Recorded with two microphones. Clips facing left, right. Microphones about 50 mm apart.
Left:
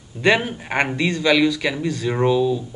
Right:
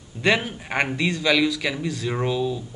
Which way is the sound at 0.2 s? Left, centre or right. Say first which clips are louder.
Left 4 dB; centre.